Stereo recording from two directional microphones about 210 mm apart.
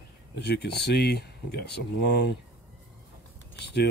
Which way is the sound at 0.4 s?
50° left (ahead or behind).